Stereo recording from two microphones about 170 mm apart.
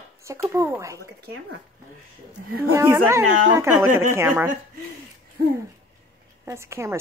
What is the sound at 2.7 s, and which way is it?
Speech, 15° right (ahead or behind).